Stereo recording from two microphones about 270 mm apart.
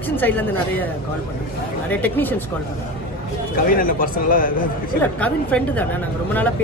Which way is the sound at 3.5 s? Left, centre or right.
Left.